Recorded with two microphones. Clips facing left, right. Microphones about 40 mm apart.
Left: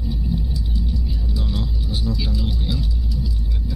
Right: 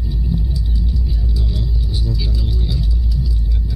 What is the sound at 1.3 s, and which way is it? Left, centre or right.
Music, left.